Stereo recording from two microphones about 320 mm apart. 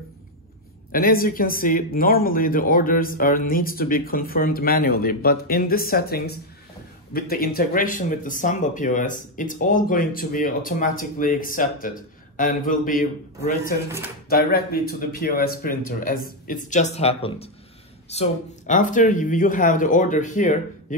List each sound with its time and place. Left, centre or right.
0.9 s speech: left